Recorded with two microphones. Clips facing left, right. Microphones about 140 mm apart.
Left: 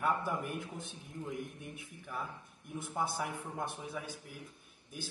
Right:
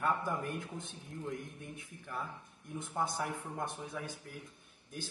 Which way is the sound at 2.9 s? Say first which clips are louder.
Even; 10° left (ahead or behind).